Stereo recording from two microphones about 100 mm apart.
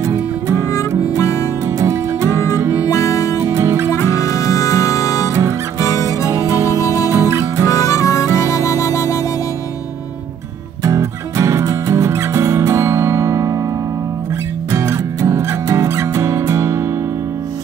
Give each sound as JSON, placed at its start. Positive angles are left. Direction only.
{"t": 0.0, "sound": "music", "side_deg": -30}
{"t": 0.7, "sound": "music", "side_deg": 35}
{"t": 1.8, "sound": "music", "side_deg": -30}
{"t": 2.9, "sound": "music", "side_deg": 30}
{"t": 3.3, "sound": "music", "side_deg": -30}
{"t": 3.9, "sound": "music", "side_deg": 30}
{"t": 6.4, "sound": "music", "side_deg": -35}
{"t": 6.8, "sound": "music", "side_deg": 30}
{"t": 7.1, "sound": "music", "side_deg": -30}
{"t": 7.6, "sound": "harmonica", "side_deg": 35}
{"t": 8.6, "sound": "music", "side_deg": 30}
{"t": 10.8, "sound": "music", "side_deg": -30}
{"t": 14.7, "sound": "music", "side_deg": -30}